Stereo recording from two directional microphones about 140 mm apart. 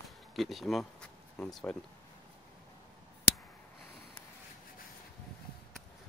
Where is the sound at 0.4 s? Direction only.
Centre (ahead or behind).